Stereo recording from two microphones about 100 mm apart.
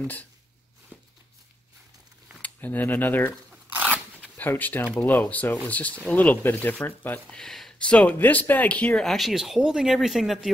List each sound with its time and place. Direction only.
0.0 s speech: 15° left (ahead or behind)
2.4 s speech: 15° left (ahead or behind)
3.9 s shuffling cards: 15° left (ahead or behind)
5.0 s speech: 20° left (ahead or behind)
7.3 s speech: 5° left (ahead or behind)